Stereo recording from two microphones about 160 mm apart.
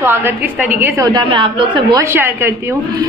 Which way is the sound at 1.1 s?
30° right (ahead or behind).